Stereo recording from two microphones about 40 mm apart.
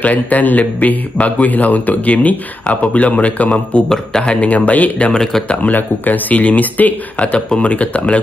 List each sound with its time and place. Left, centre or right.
0.0 s a man's voice: left
5.1 s speech: centre
5.5 s speech: left
7.2 s speech: left
7.7 s a man's voice: left